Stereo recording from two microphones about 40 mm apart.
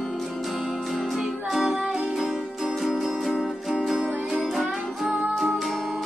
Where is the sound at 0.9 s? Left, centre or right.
Centre.